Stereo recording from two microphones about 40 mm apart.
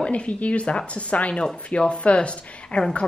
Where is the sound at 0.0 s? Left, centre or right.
Left.